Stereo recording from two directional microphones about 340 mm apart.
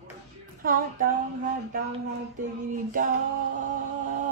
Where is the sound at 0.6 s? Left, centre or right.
Right.